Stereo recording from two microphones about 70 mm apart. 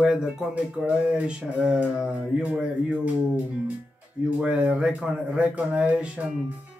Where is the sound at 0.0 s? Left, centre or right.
Centre.